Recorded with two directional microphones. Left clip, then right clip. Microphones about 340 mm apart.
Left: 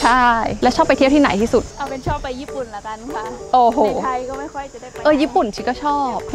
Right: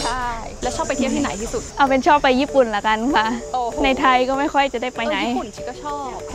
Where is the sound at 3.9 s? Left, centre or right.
Right.